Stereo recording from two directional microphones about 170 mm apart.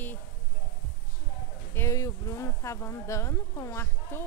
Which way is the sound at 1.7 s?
15° left (ahead or behind).